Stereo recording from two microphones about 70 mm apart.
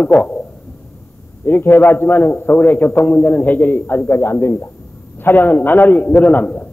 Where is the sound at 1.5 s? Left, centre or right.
Left.